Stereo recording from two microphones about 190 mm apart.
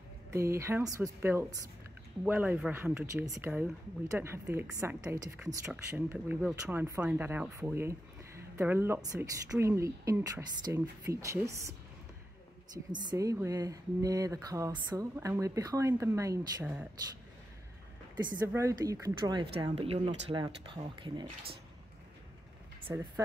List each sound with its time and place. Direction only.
0.3 s speech: 15° right (ahead or behind)
13.1 s speech: 20° right (ahead or behind)
18.5 s speech: 15° right (ahead or behind)
19.6 s speech: 30° right (ahead or behind)
22.8 s speech: 15° right (ahead or behind)